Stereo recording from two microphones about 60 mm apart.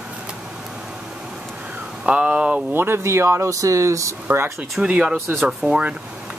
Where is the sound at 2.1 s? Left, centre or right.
Centre.